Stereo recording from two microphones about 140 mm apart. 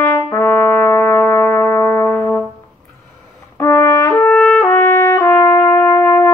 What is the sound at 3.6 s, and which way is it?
Brass instrument, 20° left (ahead or behind).